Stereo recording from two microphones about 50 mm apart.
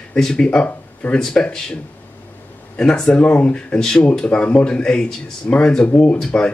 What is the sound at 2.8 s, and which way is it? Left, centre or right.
Speech, centre.